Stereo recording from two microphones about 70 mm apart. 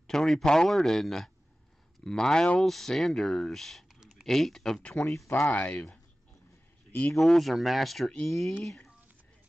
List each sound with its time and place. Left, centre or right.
0.0 s speech: centre
5.0 s speech: left
5.5 s speech: centre
7.2 s speech: centre